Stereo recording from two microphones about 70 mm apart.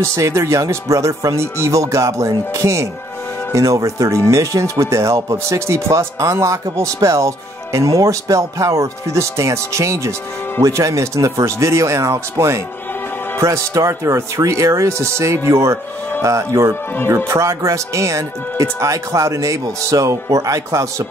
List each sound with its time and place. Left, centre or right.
0.0 s speech: right